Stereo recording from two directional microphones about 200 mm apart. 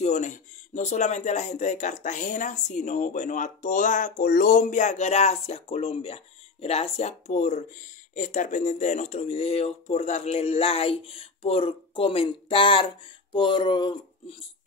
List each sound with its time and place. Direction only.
0.0 s speech: 35° left (ahead or behind)